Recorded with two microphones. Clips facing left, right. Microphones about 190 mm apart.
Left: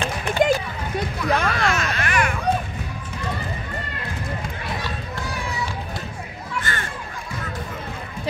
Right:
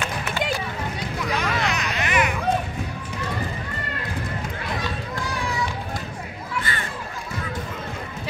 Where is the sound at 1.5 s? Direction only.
20° right (ahead or behind).